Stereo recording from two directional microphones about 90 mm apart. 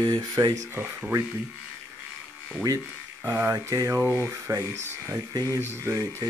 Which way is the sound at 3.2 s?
20° right (ahead or behind).